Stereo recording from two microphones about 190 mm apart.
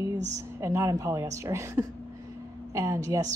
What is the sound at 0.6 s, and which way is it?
A woman's voice, 15° right (ahead or behind).